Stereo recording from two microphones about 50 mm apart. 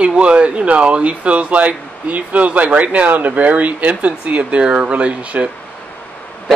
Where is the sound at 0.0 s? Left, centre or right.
Right.